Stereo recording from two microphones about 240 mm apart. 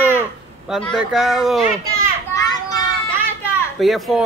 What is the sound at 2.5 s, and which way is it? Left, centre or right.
Children playing, centre.